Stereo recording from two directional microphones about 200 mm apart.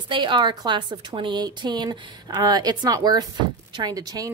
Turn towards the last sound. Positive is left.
turn(degrees=-20)  # may be behind; listen again after turning